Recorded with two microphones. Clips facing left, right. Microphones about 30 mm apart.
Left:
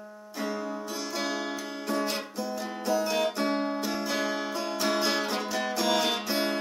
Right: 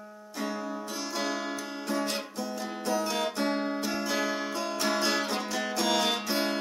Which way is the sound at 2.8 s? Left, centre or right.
Centre.